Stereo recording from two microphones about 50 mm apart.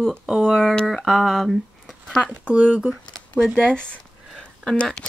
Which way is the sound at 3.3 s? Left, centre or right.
Centre.